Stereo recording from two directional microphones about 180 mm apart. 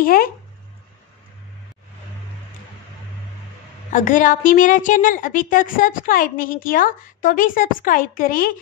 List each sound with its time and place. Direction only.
0.0 s a woman's voice: 55° left (ahead or behind)
3.9 s a woman's voice: 45° left (ahead or behind)